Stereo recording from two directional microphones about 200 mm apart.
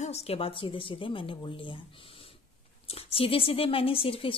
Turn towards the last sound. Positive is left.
turn(degrees=25)  # may be behind; listen again after turning